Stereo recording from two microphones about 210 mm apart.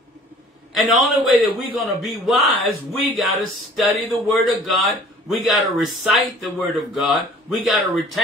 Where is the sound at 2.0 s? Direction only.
Centre (ahead or behind).